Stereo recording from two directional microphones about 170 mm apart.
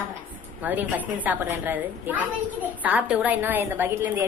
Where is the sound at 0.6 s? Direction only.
10° right (ahead or behind).